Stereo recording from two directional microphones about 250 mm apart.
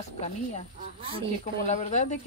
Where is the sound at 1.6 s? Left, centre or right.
Left.